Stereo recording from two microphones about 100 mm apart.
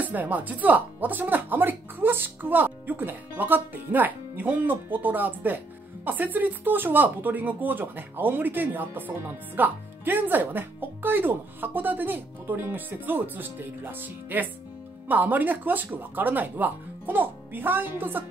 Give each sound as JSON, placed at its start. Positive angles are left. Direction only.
{"t": 0.0, "sound": "speech", "side_deg": -15}